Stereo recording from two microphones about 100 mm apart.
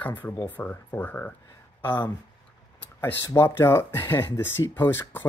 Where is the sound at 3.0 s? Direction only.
25° left (ahead or behind).